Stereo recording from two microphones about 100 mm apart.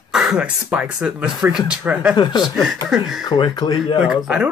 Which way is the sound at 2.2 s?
45° left (ahead or behind).